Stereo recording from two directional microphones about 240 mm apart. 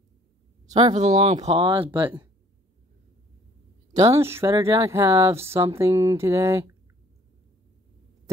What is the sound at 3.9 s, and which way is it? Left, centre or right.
Speech, centre.